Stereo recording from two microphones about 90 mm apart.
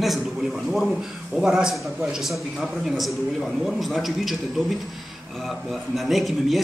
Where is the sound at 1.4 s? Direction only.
5° right (ahead or behind).